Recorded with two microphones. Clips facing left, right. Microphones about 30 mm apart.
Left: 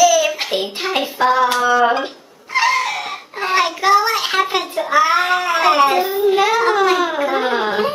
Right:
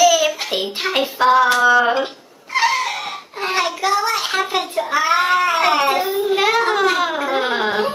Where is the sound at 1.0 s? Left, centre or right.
Centre.